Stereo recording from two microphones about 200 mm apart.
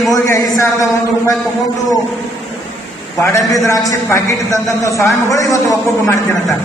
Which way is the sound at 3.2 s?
15° left (ahead or behind).